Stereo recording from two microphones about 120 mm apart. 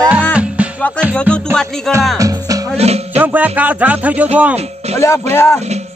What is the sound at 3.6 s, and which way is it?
Speech, 10° right (ahead or behind).